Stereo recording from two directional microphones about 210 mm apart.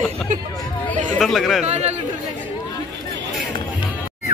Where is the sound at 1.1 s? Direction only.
Centre (ahead or behind).